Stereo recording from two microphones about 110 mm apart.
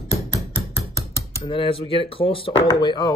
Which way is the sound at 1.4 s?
55° left (ahead or behind).